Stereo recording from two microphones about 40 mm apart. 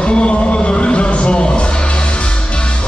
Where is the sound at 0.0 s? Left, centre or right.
Left.